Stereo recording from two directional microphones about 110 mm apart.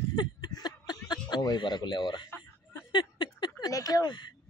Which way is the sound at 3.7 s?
30° left (ahead or behind).